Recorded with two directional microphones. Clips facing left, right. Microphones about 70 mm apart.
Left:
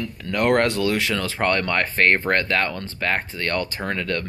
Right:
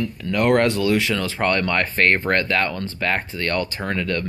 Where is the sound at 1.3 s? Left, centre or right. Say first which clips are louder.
Even; left.